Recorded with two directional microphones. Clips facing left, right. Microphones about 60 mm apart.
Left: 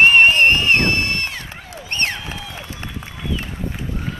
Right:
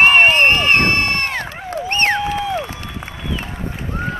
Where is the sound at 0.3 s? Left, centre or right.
Right.